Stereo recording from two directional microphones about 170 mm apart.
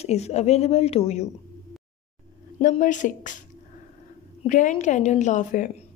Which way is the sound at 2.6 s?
50° left (ahead or behind).